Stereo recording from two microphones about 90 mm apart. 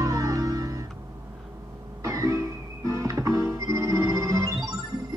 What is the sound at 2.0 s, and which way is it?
Music, 40° right (ahead or behind).